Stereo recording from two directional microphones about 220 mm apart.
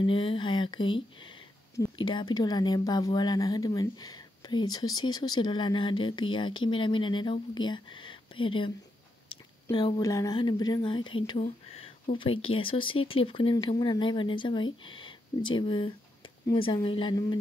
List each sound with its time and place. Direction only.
0.0 s speech: 25° left (ahead or behind)